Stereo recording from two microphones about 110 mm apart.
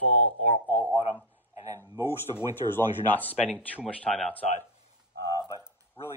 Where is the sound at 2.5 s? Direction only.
20° left (ahead or behind).